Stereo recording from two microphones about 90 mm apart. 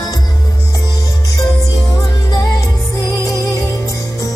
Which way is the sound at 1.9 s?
45° left (ahead or behind).